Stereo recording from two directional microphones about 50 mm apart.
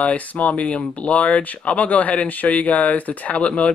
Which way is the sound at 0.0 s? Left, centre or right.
Left.